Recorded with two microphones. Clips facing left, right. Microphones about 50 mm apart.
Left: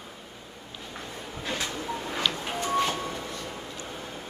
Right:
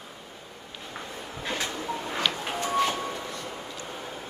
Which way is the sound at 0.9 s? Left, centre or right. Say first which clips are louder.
Right 1 dB; centre.